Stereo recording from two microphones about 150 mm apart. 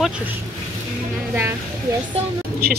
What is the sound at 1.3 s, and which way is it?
Speech, 15° right (ahead or behind).